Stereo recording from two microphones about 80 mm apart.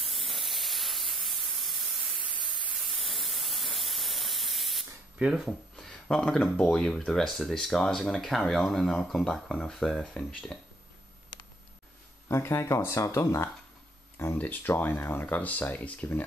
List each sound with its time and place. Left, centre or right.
0.0 s spray: centre
5.2 s speech: centre
5.8 s speech: centre
12.3 s speech: left
14.1 s speech: left